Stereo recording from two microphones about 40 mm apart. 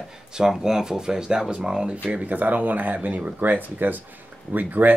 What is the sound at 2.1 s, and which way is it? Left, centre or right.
Speech, right.